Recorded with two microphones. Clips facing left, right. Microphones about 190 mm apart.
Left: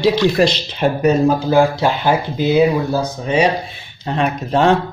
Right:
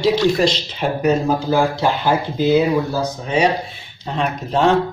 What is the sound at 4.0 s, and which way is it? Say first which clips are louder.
Speech: left 3 dB; 60° left (ahead or behind).